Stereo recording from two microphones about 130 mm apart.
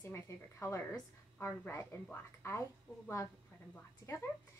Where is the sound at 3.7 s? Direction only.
15° left (ahead or behind).